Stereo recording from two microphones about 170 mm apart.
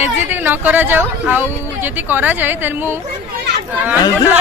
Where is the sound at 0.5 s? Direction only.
10° right (ahead or behind).